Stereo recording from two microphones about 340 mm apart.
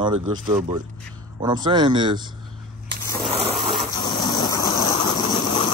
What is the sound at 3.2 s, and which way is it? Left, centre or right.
Snoring, centre.